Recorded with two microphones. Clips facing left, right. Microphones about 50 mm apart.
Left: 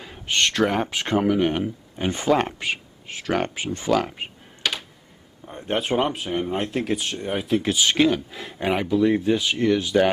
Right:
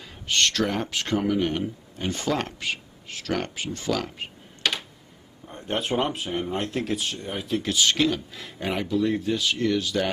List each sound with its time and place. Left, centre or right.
0.0 s speech: left
4.6 s computer keyboard: centre
5.4 s speech: centre
7.3 s speech: centre